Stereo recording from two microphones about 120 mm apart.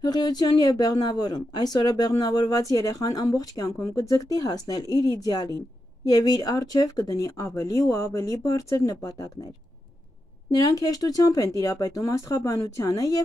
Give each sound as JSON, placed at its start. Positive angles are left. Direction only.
{"t": 0.0, "sound": "speech", "side_deg": 35}
{"t": 10.6, "sound": "speech", "side_deg": 35}